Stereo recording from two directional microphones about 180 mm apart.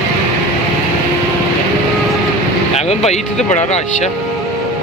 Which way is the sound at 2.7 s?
35° left (ahead or behind).